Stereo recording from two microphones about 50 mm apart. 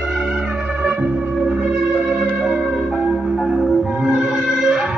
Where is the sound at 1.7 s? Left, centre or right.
Centre.